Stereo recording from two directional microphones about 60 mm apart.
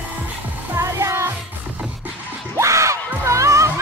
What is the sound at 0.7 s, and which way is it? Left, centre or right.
Music, right.